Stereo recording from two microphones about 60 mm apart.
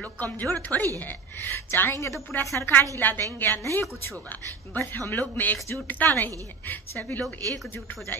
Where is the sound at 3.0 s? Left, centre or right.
Left.